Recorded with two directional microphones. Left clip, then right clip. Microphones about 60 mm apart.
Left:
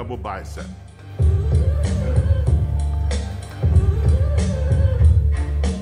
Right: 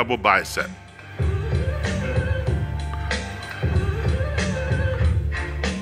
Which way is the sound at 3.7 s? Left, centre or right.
Left.